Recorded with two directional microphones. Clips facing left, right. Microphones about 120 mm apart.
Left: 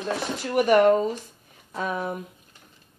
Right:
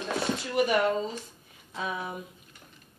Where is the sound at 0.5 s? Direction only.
55° left (ahead or behind).